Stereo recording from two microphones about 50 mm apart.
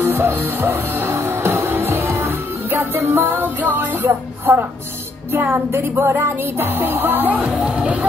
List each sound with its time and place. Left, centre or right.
0.0 s music: right
0.9 s music: right
5.3 s music: right
7.6 s music: right